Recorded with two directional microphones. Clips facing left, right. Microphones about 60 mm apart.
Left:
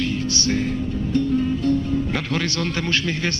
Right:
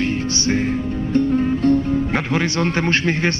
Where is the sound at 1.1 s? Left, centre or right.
Right.